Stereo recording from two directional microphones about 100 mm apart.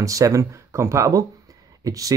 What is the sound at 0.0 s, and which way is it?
Speech, 35° right (ahead or behind).